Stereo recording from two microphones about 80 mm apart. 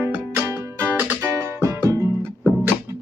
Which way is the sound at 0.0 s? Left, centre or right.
Right.